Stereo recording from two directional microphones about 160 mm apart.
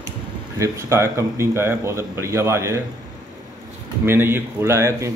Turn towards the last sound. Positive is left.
turn(degrees=-15)  # may be behind; listen again after turning